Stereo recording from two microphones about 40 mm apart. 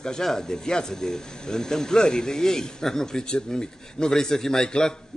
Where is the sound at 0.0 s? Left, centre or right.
Centre.